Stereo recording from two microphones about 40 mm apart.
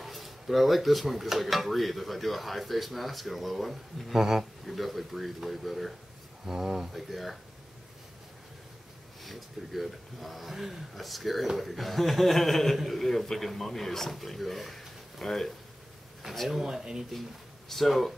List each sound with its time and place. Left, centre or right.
0.0 s speech: centre
6.4 s speech: centre
9.2 s speech: centre
16.4 s speech: centre
17.6 s speech: centre